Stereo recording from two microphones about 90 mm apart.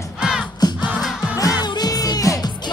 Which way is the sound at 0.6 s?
45° left (ahead or behind).